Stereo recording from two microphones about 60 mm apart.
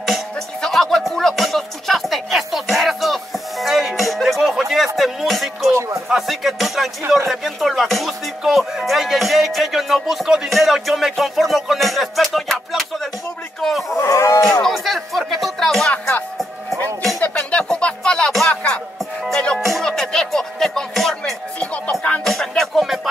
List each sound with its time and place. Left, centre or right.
0.6 s music: centre
5.7 s music: right
6.0 s speech: centre
7.2 s music: centre
13.6 s a sound: centre
13.8 s livestock: left
14.6 s music: centre
15.9 s music: left
17.2 s a sound: left
19.2 s music: centre